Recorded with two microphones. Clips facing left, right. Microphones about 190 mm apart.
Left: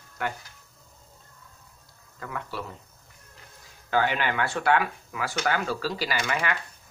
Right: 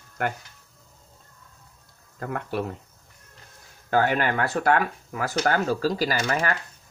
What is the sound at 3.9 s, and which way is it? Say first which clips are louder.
Speech: right 3 dB; 45° right (ahead or behind).